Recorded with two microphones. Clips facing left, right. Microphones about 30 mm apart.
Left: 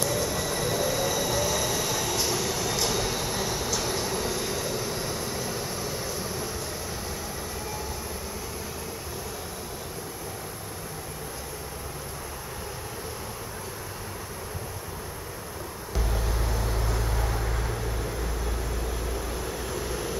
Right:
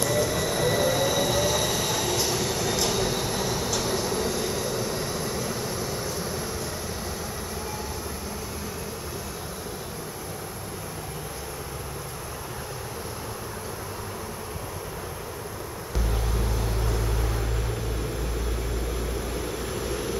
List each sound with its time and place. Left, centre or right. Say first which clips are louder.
0.0 s train: right 3 dB; centre
16.1 s vehicle: right 1 dB; centre
17.3 s vehicle: even; centre
19.4 s vehicle: right 1 dB; centre